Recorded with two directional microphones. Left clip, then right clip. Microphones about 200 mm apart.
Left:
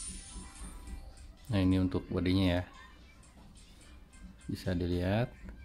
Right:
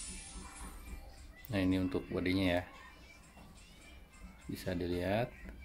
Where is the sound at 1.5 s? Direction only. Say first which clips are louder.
Left 3 dB; 20° left (ahead or behind).